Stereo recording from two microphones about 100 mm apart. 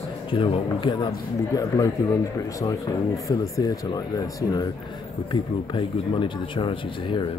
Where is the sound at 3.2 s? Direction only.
35° left (ahead or behind).